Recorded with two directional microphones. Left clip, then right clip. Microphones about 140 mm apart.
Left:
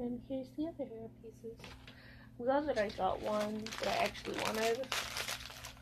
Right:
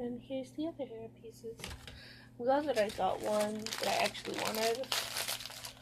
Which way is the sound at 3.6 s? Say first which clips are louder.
Right 2 dB; 25° right (ahead or behind).